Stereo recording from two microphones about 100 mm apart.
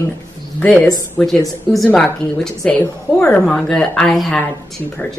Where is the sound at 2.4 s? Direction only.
10° left (ahead or behind).